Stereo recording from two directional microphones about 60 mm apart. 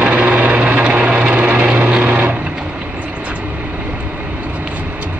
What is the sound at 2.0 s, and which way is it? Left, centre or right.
Sewing machine, right.